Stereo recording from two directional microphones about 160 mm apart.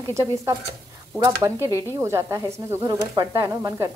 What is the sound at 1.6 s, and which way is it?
Speech, 15° right (ahead or behind).